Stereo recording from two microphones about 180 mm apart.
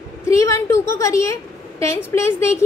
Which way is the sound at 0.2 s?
15° left (ahead or behind).